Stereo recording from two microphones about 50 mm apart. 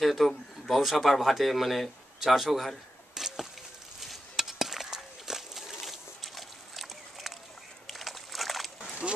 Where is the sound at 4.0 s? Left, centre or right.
Centre.